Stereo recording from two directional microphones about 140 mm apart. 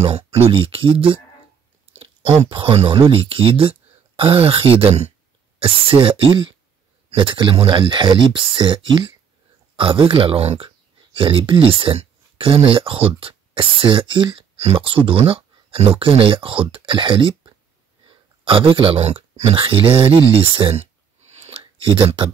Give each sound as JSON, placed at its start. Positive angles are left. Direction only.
{"t": 0.0, "sound": "speech", "side_deg": -50}
{"t": 2.5, "sound": "speech", "side_deg": -40}